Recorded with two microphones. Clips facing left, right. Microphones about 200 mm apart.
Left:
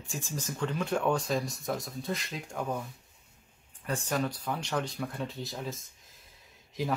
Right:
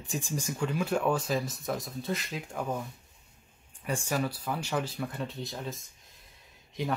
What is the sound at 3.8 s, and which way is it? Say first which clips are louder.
Speech: even; 10° right (ahead or behind).